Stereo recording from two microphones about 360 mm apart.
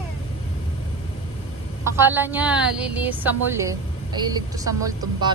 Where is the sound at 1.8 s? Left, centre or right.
Centre.